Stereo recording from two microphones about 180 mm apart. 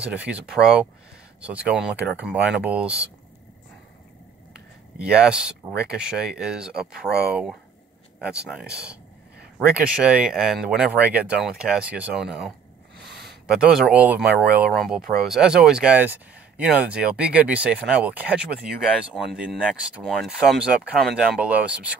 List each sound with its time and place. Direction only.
0.0 s speech: 5° right (ahead or behind)
4.9 s speech: 5° right (ahead or behind)
10.0 s speech: 5° right (ahead or behind)
13.1 s a sound: 65° right (ahead or behind)
13.5 s speech: 5° right (ahead or behind)